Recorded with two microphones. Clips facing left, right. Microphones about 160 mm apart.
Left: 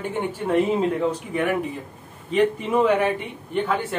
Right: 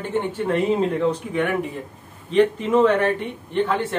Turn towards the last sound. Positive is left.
turn(degrees=5)  # may be behind; listen again after turning